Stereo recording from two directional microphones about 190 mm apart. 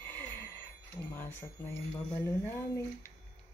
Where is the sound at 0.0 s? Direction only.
10° left (ahead or behind).